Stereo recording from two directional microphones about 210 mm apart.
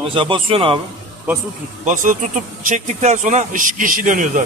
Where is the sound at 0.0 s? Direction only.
25° right (ahead or behind).